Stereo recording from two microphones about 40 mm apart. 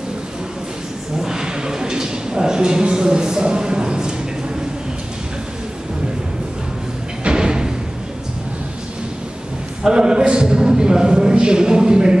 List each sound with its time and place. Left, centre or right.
1.2 s a sound: centre
7.2 s music: centre
9.8 s a man's voice: centre